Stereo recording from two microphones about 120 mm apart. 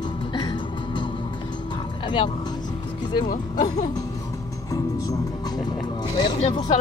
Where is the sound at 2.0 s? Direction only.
45° left (ahead or behind).